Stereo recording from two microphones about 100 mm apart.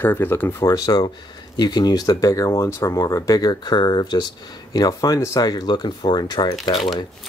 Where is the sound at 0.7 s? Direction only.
40° left (ahead or behind).